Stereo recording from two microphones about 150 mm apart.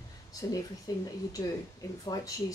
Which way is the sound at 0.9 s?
25° left (ahead or behind).